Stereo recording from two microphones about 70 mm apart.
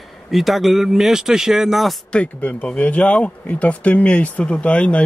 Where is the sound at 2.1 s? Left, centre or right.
Centre.